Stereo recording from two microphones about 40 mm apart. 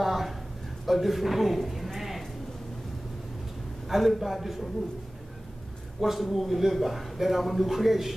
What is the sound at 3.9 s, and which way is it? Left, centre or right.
Speech, centre.